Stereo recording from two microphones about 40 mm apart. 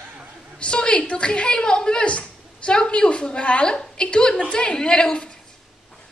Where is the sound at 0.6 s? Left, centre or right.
Left.